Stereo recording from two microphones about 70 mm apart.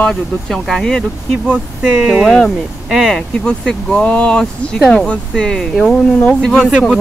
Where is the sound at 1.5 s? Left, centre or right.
Right.